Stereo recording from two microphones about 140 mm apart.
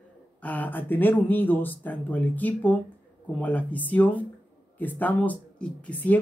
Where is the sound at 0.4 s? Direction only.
10° left (ahead or behind).